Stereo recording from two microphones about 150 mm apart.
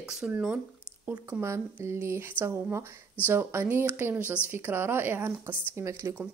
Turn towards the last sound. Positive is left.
turn(degrees=-15)  # may be behind; listen again after turning